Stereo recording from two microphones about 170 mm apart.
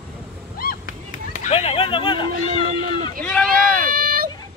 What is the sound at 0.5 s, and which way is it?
Chop, 55° left (ahead or behind).